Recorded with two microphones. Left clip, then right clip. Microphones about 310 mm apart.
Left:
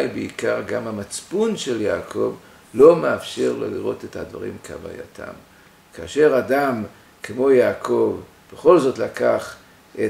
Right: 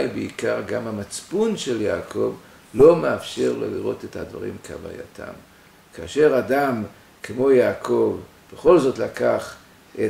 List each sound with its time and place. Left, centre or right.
0.0 s speech: centre
7.9 s speech: centre
8.5 s speech: centre